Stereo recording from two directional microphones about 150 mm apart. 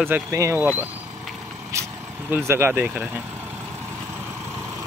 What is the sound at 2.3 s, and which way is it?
Speech, 15° right (ahead or behind).